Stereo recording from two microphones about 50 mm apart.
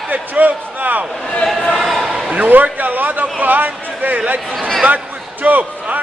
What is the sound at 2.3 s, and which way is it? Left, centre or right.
A man's voice, right.